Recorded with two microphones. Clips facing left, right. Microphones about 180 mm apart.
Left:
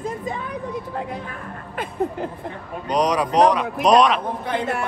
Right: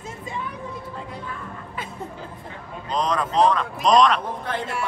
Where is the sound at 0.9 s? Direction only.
60° left (ahead or behind).